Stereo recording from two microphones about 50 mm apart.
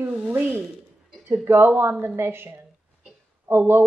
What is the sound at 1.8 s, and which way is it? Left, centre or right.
A woman's voice, right.